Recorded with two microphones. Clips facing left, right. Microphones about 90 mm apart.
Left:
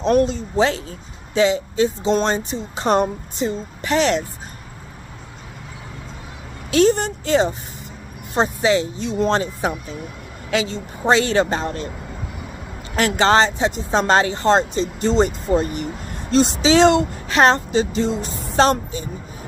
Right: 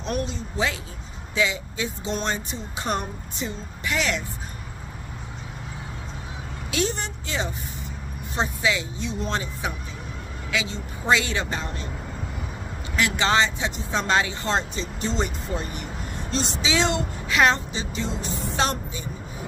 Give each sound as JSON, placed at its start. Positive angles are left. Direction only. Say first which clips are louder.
{"t": 0.0, "sound": "speech", "louder": "left 11 dB", "side_deg": 45}
{"t": 6.7, "sound": "speech", "louder": "left 11 dB", "side_deg": 45}
{"t": 12.9, "sound": "speech", "louder": "left 6 dB", "side_deg": 45}